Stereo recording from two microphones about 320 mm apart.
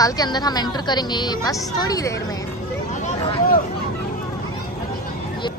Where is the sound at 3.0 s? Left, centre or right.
Left.